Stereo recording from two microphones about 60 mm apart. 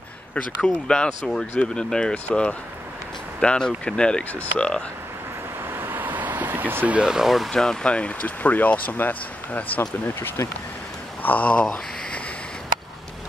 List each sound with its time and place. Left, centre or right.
0.3 s speech: centre
5.7 s vehicle: right
6.9 s speech: centre
7.5 s speech: centre; by 10.3 s left
11.2 s speech: left
11.6 s a sound: centre